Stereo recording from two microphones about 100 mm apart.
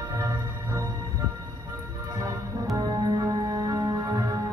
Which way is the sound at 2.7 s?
40° right (ahead or behind).